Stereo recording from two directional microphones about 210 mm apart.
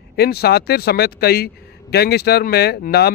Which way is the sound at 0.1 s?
50° left (ahead or behind).